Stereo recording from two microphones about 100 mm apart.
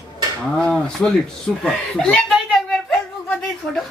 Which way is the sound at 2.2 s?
5° left (ahead or behind).